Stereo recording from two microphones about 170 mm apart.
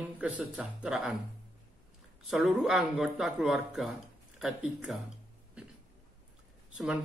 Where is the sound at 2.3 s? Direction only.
Centre (ahead or behind).